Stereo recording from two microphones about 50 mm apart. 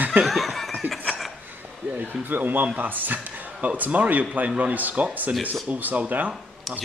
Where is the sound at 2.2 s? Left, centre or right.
Right.